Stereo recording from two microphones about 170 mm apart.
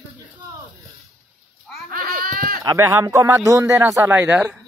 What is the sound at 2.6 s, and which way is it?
Speech, 20° right (ahead or behind).